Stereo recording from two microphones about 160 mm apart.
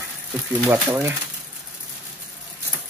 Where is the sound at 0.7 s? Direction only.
15° right (ahead or behind).